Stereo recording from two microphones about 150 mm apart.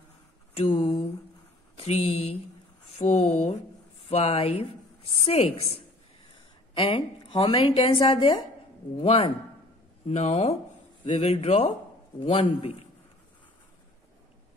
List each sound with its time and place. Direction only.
0.6 s a sound: 40° left (ahead or behind)
1.8 s a woman's voice: 45° left (ahead or behind)
6.7 s a woman's voice: 35° left (ahead or behind)